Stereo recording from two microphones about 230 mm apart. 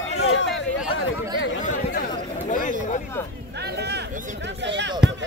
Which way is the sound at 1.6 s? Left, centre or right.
Left.